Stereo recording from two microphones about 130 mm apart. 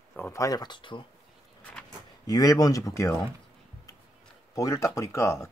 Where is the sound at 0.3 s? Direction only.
25° left (ahead or behind).